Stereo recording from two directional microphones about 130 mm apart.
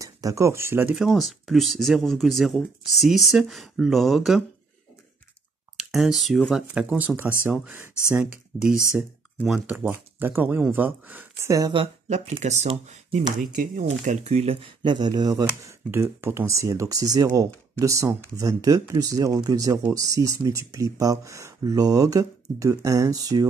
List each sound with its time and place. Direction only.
0.0 s speech: 25° right (ahead or behind)
0.9 s speech: centre (ahead or behind)
5.8 s speech: centre (ahead or behind)
11.7 s speech: 40° right (ahead or behind)
12.1 s speech: 60° right (ahead or behind)
13.4 s speech: 80° right; by 23.5 s 30° right (ahead or behind)